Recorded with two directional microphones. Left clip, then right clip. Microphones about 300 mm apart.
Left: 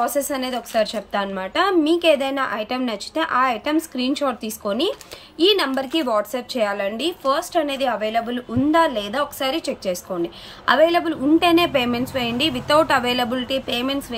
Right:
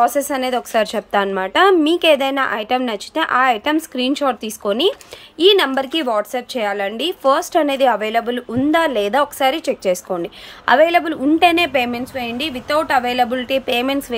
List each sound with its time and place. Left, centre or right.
0.0 s a woman's voice: centre